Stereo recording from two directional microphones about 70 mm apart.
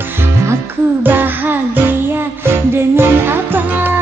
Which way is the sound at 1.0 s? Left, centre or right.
Right.